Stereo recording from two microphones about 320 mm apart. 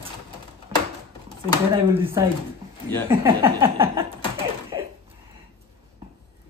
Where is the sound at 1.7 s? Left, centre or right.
Centre.